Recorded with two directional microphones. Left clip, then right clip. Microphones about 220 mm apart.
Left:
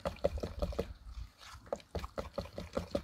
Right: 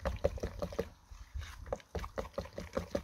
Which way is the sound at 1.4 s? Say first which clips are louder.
Even; 5° right (ahead or behind).